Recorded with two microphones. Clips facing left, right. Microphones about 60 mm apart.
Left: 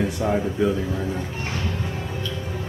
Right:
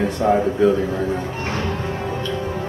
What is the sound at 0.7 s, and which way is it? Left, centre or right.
Music, right.